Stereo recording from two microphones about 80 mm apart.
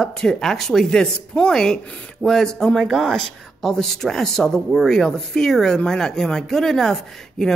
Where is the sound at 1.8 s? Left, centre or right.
Centre.